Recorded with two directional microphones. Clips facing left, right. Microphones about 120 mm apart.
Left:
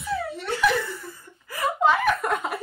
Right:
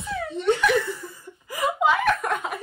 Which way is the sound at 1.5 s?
15° right (ahead or behind).